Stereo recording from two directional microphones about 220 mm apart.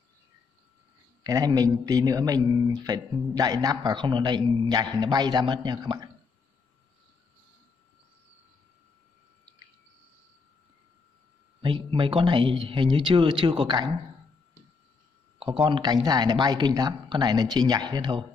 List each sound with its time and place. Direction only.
1.2 s speech: 15° right (ahead or behind)
11.6 s speech: 25° right (ahead or behind)
15.3 s speech: 25° right (ahead or behind)